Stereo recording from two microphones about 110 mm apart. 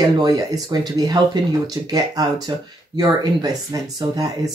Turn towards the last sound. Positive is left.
turn(degrees=-35)  # may be behind; listen again after turning